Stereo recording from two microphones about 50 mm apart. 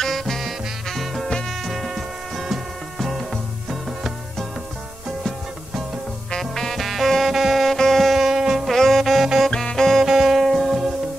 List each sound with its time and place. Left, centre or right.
0.0 s music: centre
6.4 s music: centre
9.5 s music: centre
10.0 s music: centre